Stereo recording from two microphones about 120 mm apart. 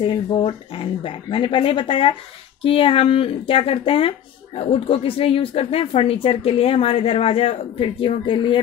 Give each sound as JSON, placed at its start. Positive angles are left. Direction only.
{"t": 0.0, "sound": "speech", "side_deg": 45}